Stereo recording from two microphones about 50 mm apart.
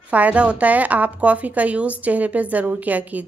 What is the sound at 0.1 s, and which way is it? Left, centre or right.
A woman's voice, right.